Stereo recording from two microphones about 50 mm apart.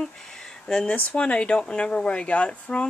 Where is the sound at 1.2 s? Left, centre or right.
Left.